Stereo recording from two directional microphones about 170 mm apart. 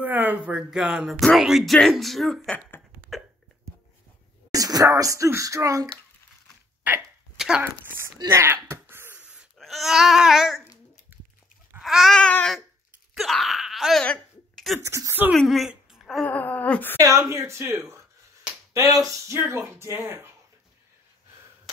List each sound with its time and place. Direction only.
0.0 s speech: 10° right (ahead or behind); by 2.8 s 5° left (ahead or behind)
4.5 s speech: 20° right (ahead or behind)
6.8 s hiccup: 5° right (ahead or behind)
8.2 s wail: 15° right (ahead or behind)
11.1 s dog: 10° right (ahead or behind)
11.8 s speech: centre (ahead or behind)
13.1 s wail: centre (ahead or behind)
14.8 s speech: 15° right (ahead or behind)
15.3 s speech: centre (ahead or behind)
16.3 s a sound: 10° left (ahead or behind)
17.0 s speech: 20° right (ahead or behind)